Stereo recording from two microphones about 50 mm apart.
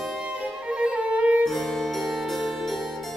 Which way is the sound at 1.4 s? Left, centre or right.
Centre.